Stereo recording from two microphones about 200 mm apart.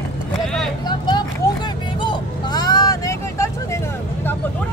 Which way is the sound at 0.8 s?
20° left (ahead or behind).